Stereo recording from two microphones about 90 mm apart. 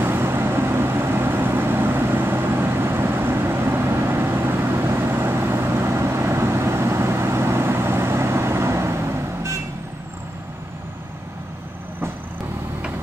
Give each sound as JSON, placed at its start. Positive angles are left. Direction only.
{"t": 0.0, "sound": "vehicle", "side_deg": -25}